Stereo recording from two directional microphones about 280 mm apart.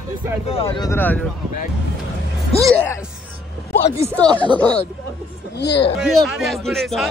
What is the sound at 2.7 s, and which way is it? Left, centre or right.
Speech, centre.